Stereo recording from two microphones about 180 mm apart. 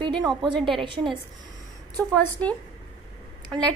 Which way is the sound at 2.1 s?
5° left (ahead or behind).